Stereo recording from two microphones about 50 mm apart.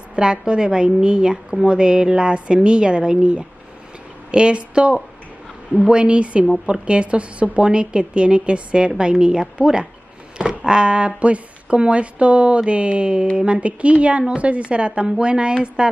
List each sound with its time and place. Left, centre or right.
0.1 s a woman's voice: centre